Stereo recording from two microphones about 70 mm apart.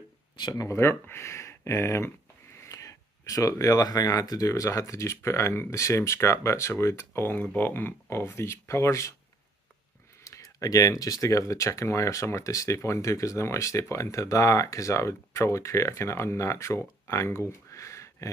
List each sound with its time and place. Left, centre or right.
0.4 s speech: left
0.7 s speech: left
2.8 s speech: left
7.2 s speech: left
10.2 s speech: left